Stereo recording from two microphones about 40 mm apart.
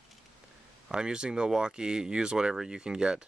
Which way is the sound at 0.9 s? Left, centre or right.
Centre.